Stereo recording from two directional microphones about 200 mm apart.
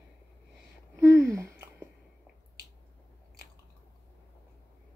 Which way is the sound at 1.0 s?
15° right (ahead or behind).